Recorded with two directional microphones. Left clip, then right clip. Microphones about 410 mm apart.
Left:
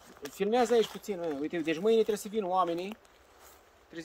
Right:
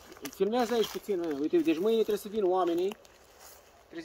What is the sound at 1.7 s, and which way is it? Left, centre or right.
Speech, centre.